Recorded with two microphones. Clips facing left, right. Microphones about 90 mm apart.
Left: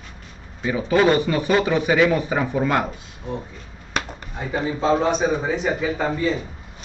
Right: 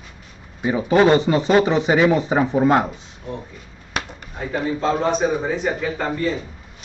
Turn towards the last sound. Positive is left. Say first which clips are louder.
# left 1 dB
turn(degrees=5)  # may be behind; listen again after turning